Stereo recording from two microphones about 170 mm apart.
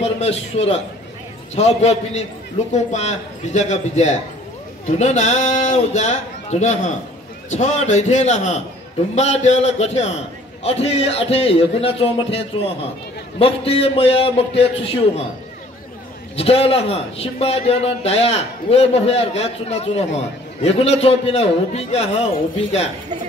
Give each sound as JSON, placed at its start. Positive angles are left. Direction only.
{"t": 0.0, "sound": "a man's voice", "side_deg": 35}
{"t": 16.3, "sound": "a man's voice", "side_deg": 35}